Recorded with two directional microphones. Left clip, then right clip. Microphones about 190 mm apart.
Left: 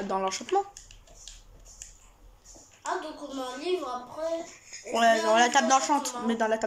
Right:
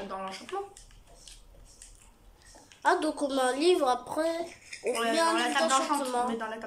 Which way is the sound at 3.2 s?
55° right (ahead or behind).